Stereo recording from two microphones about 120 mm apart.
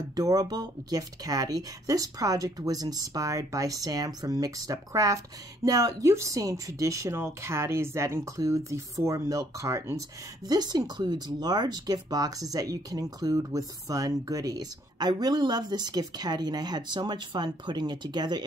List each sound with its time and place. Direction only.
0.1 s speech: 30° right (ahead or behind)